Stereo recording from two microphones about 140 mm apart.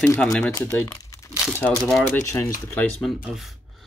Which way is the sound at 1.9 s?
20° left (ahead or behind).